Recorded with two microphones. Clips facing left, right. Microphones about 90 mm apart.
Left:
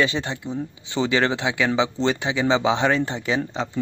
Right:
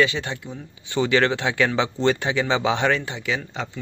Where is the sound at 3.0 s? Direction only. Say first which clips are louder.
Left 4 dB; 30° left (ahead or behind).